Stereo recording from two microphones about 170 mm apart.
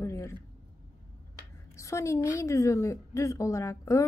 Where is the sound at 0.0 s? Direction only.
15° left (ahead or behind).